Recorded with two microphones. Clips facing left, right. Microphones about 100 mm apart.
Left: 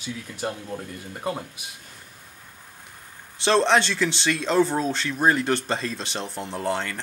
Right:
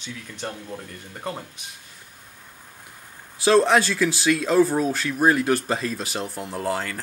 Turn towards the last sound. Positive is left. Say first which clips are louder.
# even
turn(degrees=-5)  # may be behind; listen again after turning